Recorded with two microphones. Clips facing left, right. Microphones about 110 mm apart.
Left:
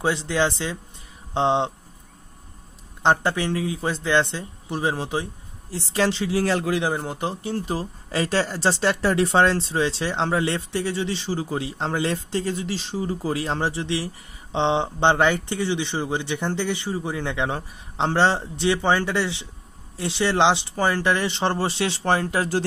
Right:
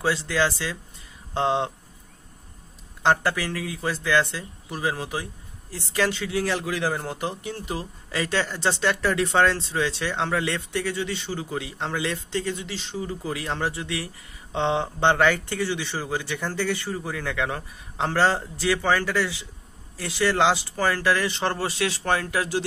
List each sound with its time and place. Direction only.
0.0 s speech: 20° left (ahead or behind)
3.0 s speech: 20° left (ahead or behind); by 6.7 s 40° left (ahead or behind)
6.7 s speech: 20° left (ahead or behind)